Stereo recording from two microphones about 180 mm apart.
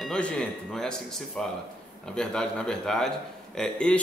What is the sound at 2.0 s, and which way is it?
A man's voice, 5° left (ahead or behind).